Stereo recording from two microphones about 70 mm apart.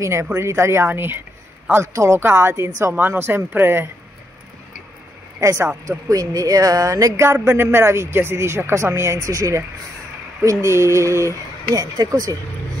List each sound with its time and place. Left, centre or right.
0.0 s speech: right
5.4 s female singing: right
5.9 s speech: right
7.2 s speech: right
10.4 s female singing: right
11.7 s speech: right